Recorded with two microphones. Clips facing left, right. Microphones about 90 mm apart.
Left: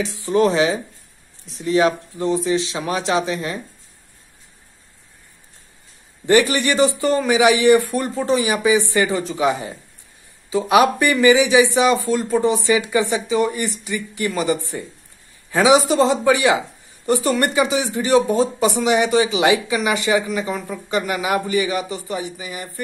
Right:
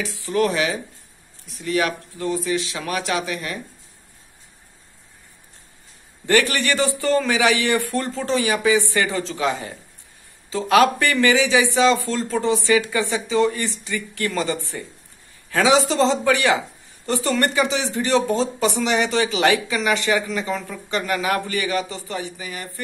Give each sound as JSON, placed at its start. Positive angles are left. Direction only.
{"t": 0.0, "sound": "speech", "side_deg": 20}
{"t": 6.2, "sound": "speech", "side_deg": 20}